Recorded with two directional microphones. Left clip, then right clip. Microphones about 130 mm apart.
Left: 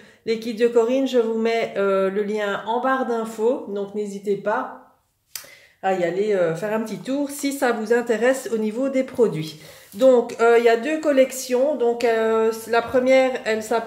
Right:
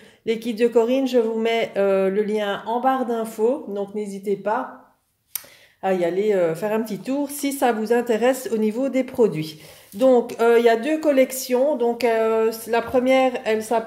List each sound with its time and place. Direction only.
0.2 s speech: 45° right (ahead or behind)
5.3 s speech: 60° right (ahead or behind); by 13.8 s 40° right (ahead or behind)